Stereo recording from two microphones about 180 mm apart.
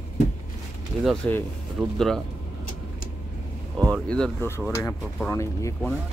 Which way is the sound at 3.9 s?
5° left (ahead or behind).